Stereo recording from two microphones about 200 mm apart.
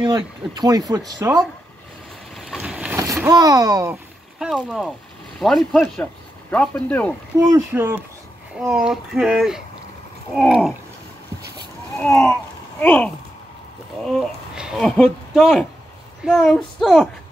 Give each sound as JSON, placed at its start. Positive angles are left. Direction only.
{"t": 0.0, "sound": "speech", "side_deg": -20}
{"t": 2.3, "sound": "vehicle", "side_deg": 0}
{"t": 3.0, "sound": "boat", "side_deg": -15}
{"t": 4.5, "sound": "speech", "side_deg": 0}
{"t": 7.3, "sound": "speech", "side_deg": -15}
{"t": 12.0, "sound": "speech", "side_deg": 5}